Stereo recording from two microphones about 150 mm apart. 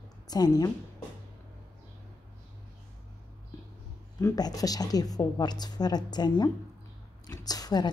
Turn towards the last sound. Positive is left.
turn(degrees=25)  # may be behind; listen again after turning